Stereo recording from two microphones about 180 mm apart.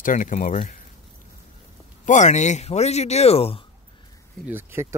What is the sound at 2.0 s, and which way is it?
Speech, 40° left (ahead or behind).